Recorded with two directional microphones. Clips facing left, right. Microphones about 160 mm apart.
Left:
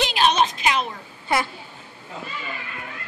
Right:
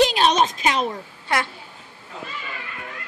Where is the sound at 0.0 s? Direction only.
40° right (ahead or behind).